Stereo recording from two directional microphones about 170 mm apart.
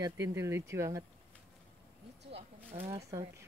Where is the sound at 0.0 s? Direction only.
20° right (ahead or behind).